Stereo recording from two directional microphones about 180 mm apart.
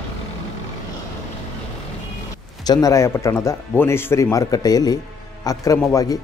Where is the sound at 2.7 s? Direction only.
20° left (ahead or behind).